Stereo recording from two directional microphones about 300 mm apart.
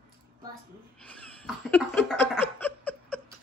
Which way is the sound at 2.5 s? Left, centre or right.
Centre.